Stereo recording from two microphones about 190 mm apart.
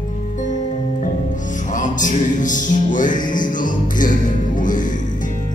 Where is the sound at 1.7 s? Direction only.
40° left (ahead or behind).